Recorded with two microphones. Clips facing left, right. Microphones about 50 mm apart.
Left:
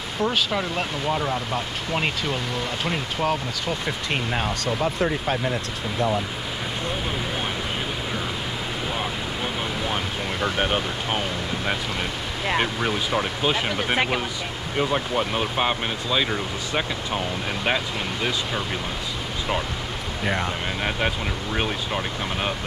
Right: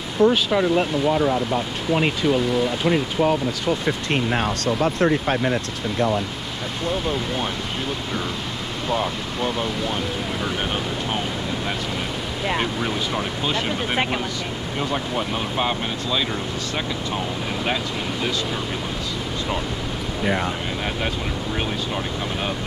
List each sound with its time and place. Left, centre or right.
0.2 s speech: centre
5.0 s speech: right
8.8 s speech: centre
12.5 s speech: centre
20.2 s speech: centre
21.5 s speech: centre